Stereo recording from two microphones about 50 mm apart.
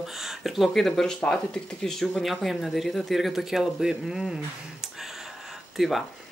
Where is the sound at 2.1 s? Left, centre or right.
Centre.